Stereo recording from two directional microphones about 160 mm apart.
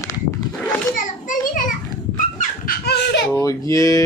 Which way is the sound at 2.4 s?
75° left (ahead or behind).